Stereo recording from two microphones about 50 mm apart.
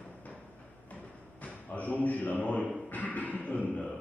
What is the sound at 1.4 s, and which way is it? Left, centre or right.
Speech, left.